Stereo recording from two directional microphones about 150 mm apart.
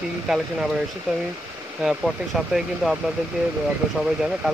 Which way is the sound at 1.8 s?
Centre (ahead or behind).